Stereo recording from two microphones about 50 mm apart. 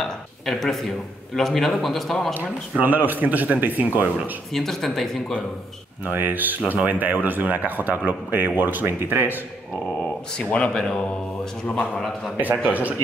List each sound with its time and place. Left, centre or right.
0.0 s a sound: centre
1.3 s a man's voice: centre
2.8 s speech: right
4.5 s a man's voice: centre
6.0 s speech: right
10.3 s speech: centre
10.8 s mantra: centre
12.4 s speech: right